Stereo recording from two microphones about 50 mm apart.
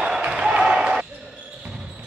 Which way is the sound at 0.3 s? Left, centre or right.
Centre.